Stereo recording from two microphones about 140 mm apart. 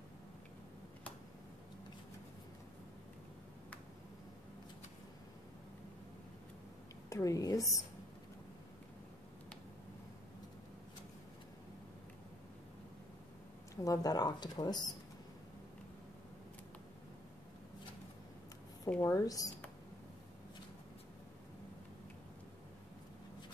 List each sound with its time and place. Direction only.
7.1 s speech: 25° left (ahead or behind)
13.8 s speech: 30° left (ahead or behind)
18.9 s speech: 15° left (ahead or behind)